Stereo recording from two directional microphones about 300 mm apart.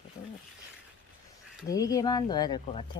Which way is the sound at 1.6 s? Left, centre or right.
Centre.